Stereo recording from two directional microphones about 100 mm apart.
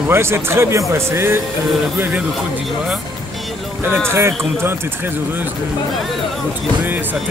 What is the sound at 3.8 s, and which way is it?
Speech, 25° right (ahead or behind).